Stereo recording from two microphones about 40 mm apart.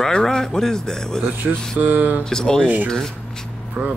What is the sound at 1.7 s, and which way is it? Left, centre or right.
Speech, right.